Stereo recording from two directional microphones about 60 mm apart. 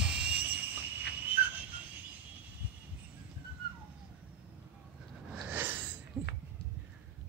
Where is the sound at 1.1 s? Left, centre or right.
Right.